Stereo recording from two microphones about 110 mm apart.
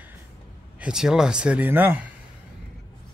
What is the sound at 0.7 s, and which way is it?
Speech, 5° right (ahead or behind).